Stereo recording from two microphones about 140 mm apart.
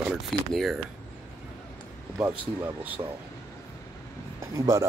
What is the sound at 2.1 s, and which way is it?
Speech, 20° right (ahead or behind).